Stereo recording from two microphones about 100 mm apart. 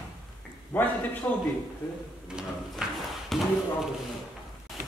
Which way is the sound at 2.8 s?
5° right (ahead or behind).